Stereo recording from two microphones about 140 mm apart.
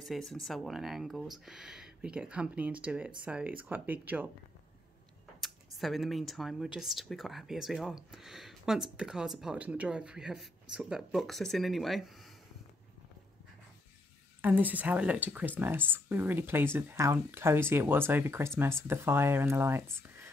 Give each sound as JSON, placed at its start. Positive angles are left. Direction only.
{"t": 0.0, "sound": "speech", "side_deg": 0}
{"t": 5.8, "sound": "speech", "side_deg": 0}
{"t": 14.4, "sound": "speech", "side_deg": -15}